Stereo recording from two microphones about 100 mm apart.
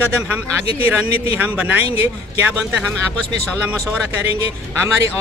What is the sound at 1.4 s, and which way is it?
Speech, 15° right (ahead or behind).